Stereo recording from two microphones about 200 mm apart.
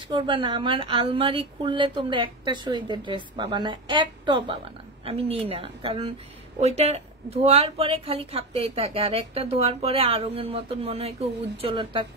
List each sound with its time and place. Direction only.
0.1 s a woman's voice: 25° right (ahead or behind)